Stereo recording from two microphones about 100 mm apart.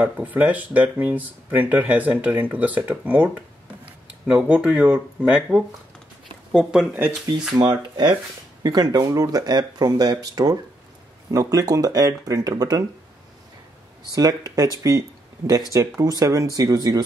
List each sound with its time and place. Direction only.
0.0 s speech: 15° right (ahead or behind)
4.3 s speech: 5° right (ahead or behind)
6.9 s speech: 20° right (ahead or behind)
7.5 s speech: 45° right (ahead or behind)
14.1 s speech: 40° right (ahead or behind)